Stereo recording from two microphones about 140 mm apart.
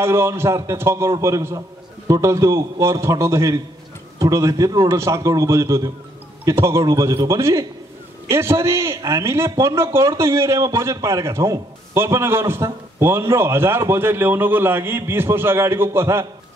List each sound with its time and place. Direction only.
0.0 s a man's voice: 20° right (ahead or behind)